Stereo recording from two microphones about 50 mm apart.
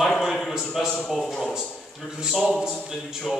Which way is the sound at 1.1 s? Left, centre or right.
Centre.